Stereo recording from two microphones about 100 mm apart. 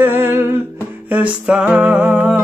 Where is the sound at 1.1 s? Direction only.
10° right (ahead or behind).